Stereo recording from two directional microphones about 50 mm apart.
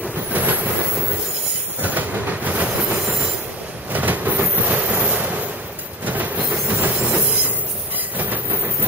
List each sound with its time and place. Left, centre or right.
0.3 s vehicle: right
1.8 s train: right